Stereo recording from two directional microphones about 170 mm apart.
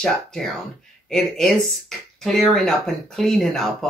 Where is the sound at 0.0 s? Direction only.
5° left (ahead or behind).